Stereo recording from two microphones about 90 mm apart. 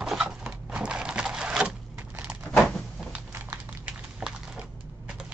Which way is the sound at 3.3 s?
20° right (ahead or behind).